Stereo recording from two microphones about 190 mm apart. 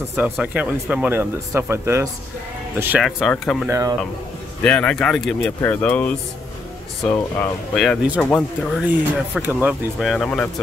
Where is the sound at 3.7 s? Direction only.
15° right (ahead or behind).